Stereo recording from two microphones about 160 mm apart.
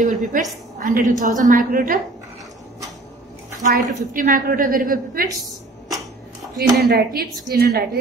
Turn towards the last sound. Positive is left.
turn(degrees=-75)  # may be behind; listen again after turning